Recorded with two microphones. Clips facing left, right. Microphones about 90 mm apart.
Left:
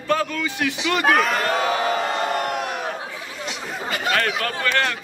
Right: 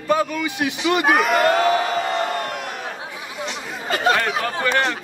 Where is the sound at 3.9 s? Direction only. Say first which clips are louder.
Right 5 dB; 35° right (ahead or behind).